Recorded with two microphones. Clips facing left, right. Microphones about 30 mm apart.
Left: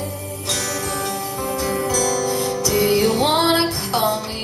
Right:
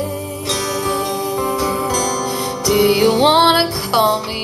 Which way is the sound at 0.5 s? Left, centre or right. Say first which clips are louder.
Right 5 dB; right.